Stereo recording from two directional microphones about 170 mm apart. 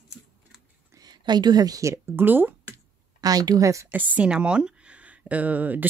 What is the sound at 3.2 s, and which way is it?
Speech, 20° right (ahead or behind).